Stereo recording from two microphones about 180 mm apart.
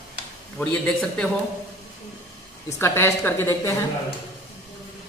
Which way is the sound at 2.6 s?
15° left (ahead or behind).